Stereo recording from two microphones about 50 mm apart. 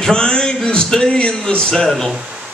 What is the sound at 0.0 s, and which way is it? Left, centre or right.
Speech, centre.